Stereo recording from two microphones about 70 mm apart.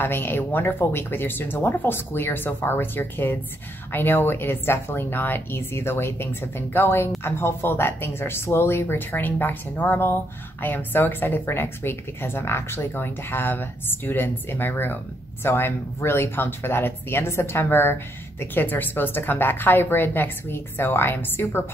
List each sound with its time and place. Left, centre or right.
0.0 s speech: left